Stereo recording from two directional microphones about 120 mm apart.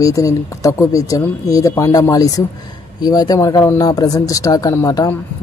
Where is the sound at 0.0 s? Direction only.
25° left (ahead or behind).